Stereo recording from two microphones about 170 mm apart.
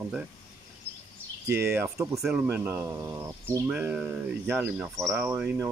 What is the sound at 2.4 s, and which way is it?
Speech, 15° right (ahead or behind).